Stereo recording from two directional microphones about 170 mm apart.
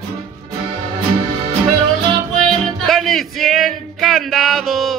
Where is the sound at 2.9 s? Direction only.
Centre (ahead or behind).